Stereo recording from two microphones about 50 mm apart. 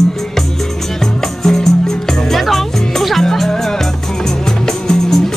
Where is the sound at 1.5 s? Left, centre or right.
Centre.